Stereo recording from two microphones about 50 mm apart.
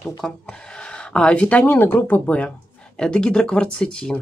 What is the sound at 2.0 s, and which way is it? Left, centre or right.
Speech, left.